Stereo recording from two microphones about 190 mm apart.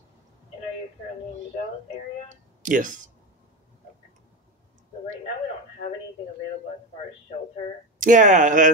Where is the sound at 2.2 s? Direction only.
45° right (ahead or behind).